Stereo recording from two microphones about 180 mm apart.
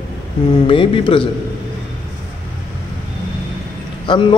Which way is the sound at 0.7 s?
30° left (ahead or behind).